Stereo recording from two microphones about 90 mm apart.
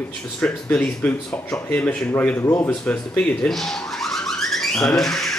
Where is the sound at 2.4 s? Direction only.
25° left (ahead or behind).